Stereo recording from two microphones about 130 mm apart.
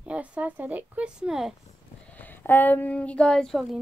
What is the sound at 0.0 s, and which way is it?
Speech, 10° right (ahead or behind).